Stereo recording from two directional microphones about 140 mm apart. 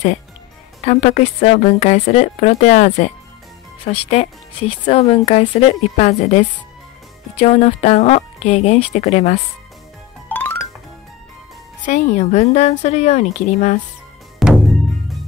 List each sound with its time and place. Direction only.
0.8 s speech: 60° left (ahead or behind)
10.2 s music: 15° left (ahead or behind)
11.8 s speech: 55° left (ahead or behind)
14.4 s music: centre (ahead or behind)